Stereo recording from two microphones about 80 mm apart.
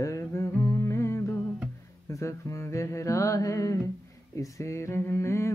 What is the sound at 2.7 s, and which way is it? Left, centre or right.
Mantra, left.